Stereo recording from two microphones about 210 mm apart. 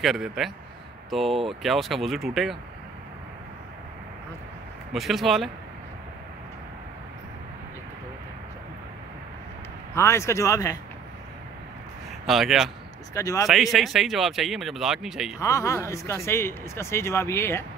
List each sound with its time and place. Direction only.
0.0 s a man's voice: centre (ahead or behind)
4.9 s a man's voice: centre (ahead or behind)
9.9 s speech: 15° left (ahead or behind)
12.3 s a man's voice: centre (ahead or behind)
13.1 s speech: 15° left (ahead or behind)
13.5 s a man's voice: centre (ahead or behind)
15.4 s speech: 15° left (ahead or behind)